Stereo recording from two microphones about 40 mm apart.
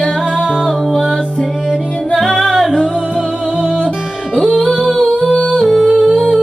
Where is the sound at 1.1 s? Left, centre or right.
Centre.